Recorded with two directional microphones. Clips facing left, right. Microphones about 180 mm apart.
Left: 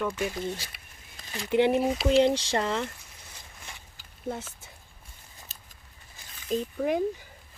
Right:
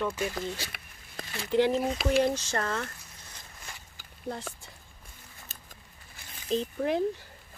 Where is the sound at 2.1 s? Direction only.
25° left (ahead or behind).